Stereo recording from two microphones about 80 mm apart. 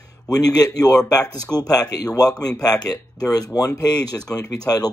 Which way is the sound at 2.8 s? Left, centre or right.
Left.